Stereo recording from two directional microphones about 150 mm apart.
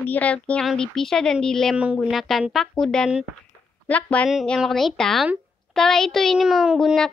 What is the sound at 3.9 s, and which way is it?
Child singing, 10° left (ahead or behind).